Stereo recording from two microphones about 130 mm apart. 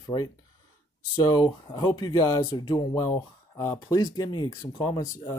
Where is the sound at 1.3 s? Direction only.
30° left (ahead or behind).